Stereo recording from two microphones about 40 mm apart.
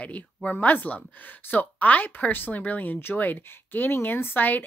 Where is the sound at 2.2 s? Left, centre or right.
Left.